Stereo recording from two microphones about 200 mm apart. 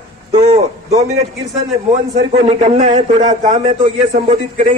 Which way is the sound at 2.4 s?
30° right (ahead or behind).